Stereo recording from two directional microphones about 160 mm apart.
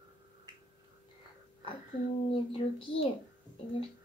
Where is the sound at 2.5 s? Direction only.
35° left (ahead or behind).